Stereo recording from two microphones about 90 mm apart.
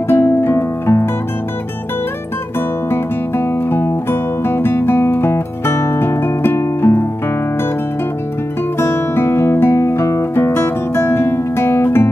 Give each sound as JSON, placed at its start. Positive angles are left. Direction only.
{"t": 0.1, "sound": "music", "side_deg": 25}
{"t": 2.9, "sound": "music", "side_deg": 25}
{"t": 8.7, "sound": "music", "side_deg": 25}